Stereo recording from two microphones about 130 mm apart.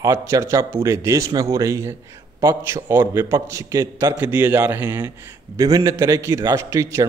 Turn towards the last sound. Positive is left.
turn(degrees=-25)  # may be behind; listen again after turning